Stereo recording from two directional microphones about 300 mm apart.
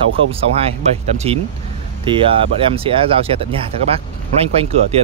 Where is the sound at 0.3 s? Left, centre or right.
Centre.